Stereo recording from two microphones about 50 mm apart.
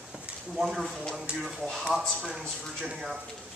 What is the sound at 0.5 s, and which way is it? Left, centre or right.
Speech, centre.